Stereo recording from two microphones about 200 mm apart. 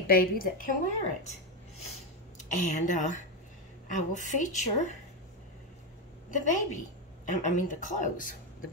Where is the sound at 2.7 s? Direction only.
40° left (ahead or behind).